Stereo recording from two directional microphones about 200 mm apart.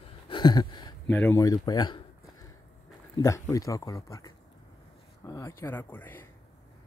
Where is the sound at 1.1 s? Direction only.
10° left (ahead or behind).